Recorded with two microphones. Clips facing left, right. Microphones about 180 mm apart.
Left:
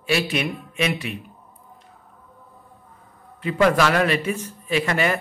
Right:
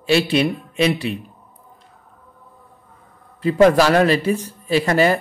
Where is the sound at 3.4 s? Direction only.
35° right (ahead or behind).